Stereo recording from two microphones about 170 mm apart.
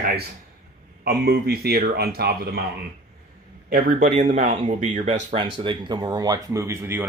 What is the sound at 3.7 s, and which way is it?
Speech, 55° right (ahead or behind).